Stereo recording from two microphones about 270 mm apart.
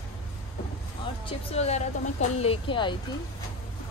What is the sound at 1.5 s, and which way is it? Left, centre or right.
Speech, left.